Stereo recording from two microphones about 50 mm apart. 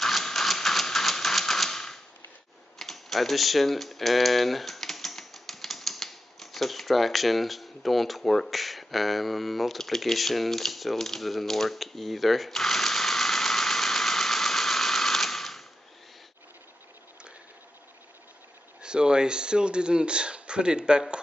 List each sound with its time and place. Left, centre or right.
0.0 s typewriter: centre
2.8 s typing: centre
18.8 s speech: centre